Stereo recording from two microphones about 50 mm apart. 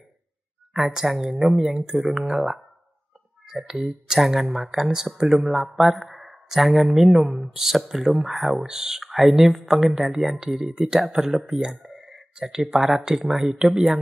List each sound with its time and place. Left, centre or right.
0.7 s speech: centre
11.8 s a sound: centre
12.7 s speech: centre